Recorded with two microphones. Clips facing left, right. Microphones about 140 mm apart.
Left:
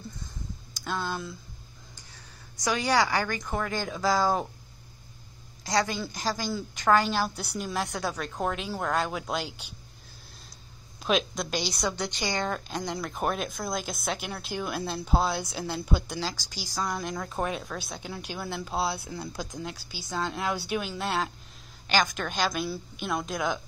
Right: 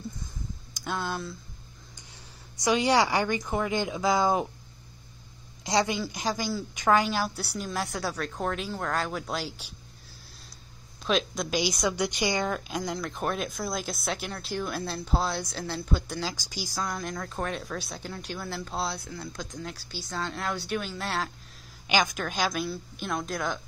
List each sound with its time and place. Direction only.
0.7 s a sound: 15° right (ahead or behind)
2.6 s speech: 25° right (ahead or behind)
5.6 s a woman's voice: 20° right (ahead or behind)
5.9 s speech: 10° right (ahead or behind)
11.0 s speech: 5° left (ahead or behind)
19.1 s speech: 15° left (ahead or behind)
19.6 s speech: centre (ahead or behind)
21.8 s speech: 10° right (ahead or behind)